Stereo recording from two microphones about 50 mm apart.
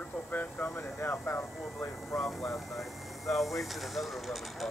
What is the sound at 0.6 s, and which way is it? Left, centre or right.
Vehicle, left.